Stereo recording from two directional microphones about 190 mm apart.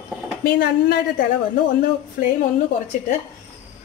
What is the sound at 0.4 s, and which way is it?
Speech, 55° left (ahead or behind).